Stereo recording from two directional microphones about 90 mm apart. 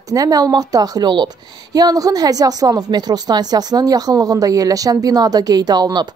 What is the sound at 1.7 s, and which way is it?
Speech, 45° right (ahead or behind).